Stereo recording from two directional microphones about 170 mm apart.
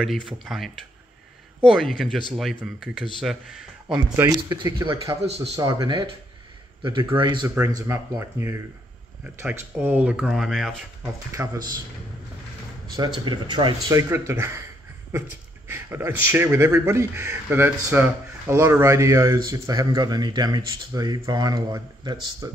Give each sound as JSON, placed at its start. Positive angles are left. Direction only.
{"t": 0.0, "sound": "speech", "side_deg": 0}
{"t": 3.9, "sound": "speech", "side_deg": -20}
{"t": 11.3, "sound": "speech", "side_deg": -20}
{"t": 12.9, "sound": "speech", "side_deg": -25}
{"t": 15.7, "sound": "speech", "side_deg": -15}